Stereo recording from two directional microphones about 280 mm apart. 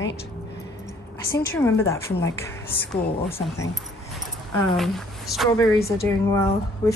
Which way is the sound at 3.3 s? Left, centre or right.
Left.